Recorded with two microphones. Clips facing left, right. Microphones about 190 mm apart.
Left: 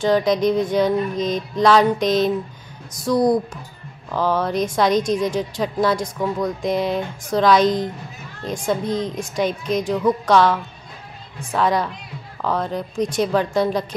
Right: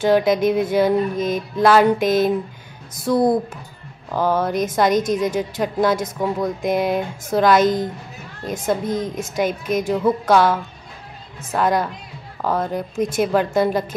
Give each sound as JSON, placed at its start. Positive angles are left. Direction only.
{"t": 0.0, "sound": "music", "side_deg": -5}
{"t": 3.0, "sound": "speech", "side_deg": -25}
{"t": 4.2, "sound": "music", "side_deg": -5}
{"t": 6.1, "sound": "speech", "side_deg": -20}
{"t": 6.4, "sound": "music", "side_deg": -5}
{"t": 8.8, "sound": "a woman's voice", "side_deg": -50}
{"t": 9.1, "sound": "music", "side_deg": -5}